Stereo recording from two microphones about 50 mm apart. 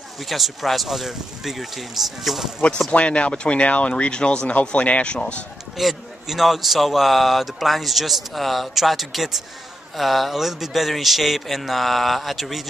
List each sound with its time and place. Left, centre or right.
0.2 s a man's voice: centre
2.9 s speech: left
5.8 s a man's voice: centre